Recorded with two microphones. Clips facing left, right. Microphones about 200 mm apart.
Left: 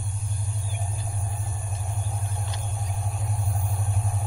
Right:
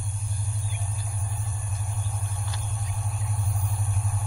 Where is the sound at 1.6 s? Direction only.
Centre (ahead or behind).